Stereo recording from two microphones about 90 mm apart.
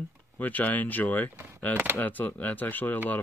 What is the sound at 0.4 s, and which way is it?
Speech, 20° left (ahead or behind).